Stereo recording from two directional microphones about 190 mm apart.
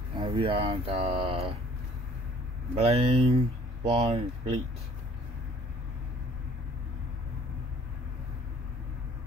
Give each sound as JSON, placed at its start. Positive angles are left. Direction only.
{"t": 0.2, "sound": "speech", "side_deg": -30}
{"t": 2.7, "sound": "speech", "side_deg": -30}